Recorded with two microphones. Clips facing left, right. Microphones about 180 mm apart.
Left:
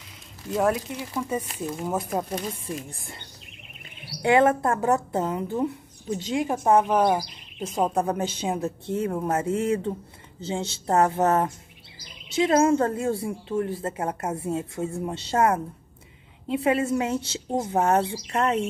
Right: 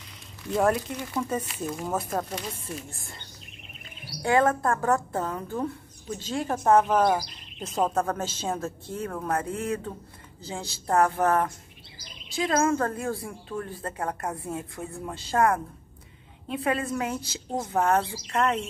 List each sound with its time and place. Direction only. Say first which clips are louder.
0.5 s speech: even; 5° left (ahead or behind)
1.9 s speech: left 2 dB; 15° left (ahead or behind)
4.2 s a woman's voice: left 3 dB; 20° left (ahead or behind)